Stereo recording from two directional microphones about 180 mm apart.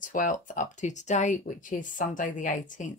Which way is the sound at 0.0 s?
45° left (ahead or behind).